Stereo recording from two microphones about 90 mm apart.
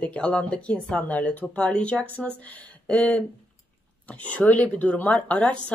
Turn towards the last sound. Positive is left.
turn(degrees=15)  # may be behind; listen again after turning